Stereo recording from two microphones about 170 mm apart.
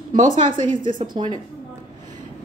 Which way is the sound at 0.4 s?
50° right (ahead or behind).